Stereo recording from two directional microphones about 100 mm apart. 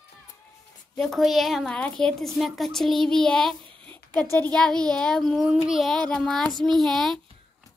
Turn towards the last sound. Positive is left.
turn(degrees=5)  # may be behind; listen again after turning